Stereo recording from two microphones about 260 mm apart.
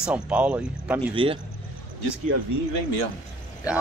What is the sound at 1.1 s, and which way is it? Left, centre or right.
Speech, centre.